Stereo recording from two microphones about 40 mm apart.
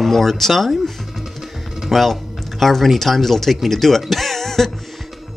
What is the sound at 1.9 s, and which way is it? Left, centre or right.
Speech, centre.